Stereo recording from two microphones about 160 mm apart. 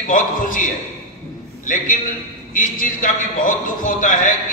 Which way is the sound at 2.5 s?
55° left (ahead or behind).